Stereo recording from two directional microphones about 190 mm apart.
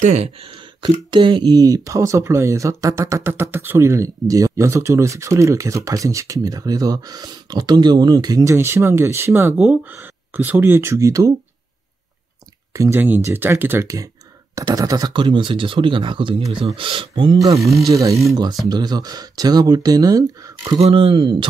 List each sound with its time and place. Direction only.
0.0 s speech: 35° right (ahead or behind)
0.8 s speech: 25° right (ahead or behind)
12.7 s speech: 15° right (ahead or behind)
17.6 s speech: centre (ahead or behind)
17.8 s speech: 15° right (ahead or behind)